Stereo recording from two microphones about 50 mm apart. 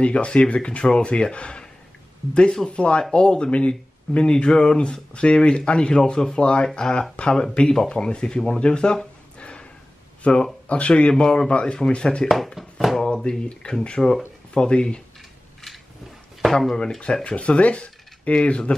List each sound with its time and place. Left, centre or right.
0.0 s speech: left
12.5 s a sound: centre
13.1 s speech: centre
17.0 s speech: left